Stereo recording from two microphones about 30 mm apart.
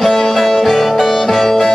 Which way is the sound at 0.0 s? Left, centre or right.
Centre.